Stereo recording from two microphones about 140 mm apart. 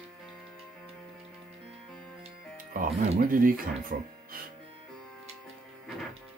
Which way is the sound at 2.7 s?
80° right.